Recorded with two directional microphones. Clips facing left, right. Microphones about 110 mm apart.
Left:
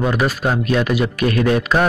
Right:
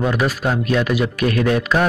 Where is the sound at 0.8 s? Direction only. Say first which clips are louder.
Left 1 dB; centre (ahead or behind).